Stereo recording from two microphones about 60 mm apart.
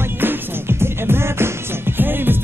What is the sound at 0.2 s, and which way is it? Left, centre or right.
Music, right.